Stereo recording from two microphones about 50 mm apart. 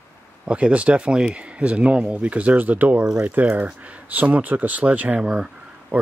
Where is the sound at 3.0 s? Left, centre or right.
Centre.